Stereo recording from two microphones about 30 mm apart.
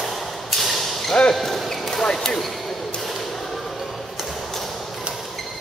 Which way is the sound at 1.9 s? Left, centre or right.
Centre.